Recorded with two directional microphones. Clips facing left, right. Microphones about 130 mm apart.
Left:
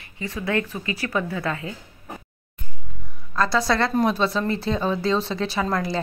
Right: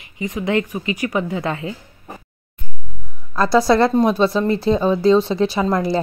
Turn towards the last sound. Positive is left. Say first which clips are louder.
# right 6 dB
turn(degrees=-25)  # may be behind; listen again after turning